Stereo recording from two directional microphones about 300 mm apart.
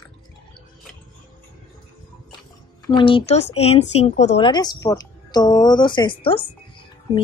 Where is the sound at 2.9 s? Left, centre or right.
Centre.